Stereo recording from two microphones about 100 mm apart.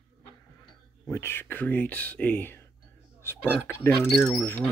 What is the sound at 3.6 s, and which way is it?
Speech, 25° left (ahead or behind).